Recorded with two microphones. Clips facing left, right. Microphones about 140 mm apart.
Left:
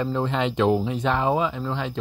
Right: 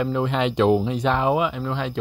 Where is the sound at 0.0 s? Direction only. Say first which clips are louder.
Right 2 dB; 10° right (ahead or behind).